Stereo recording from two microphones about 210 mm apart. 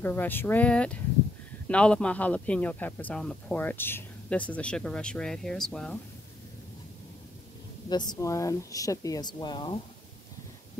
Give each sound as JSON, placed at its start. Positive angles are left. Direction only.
{"t": 0.0, "sound": "speech", "side_deg": 10}
{"t": 7.9, "sound": "speech", "side_deg": 20}